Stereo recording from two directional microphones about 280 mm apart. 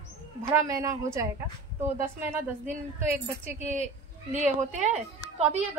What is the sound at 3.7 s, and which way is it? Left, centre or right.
Speech, right.